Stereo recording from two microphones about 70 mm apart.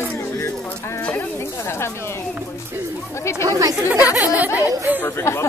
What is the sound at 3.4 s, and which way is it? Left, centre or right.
Speech, right.